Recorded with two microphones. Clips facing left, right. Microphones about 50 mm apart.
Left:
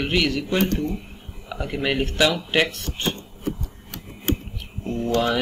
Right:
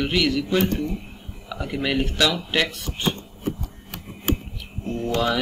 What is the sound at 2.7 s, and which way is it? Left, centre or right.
Chopping, centre.